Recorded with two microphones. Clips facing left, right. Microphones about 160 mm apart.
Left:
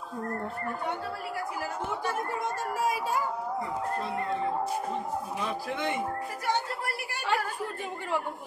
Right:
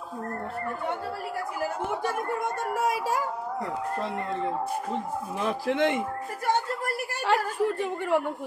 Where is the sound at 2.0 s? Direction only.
55° right (ahead or behind); by 4.1 s 75° right (ahead or behind).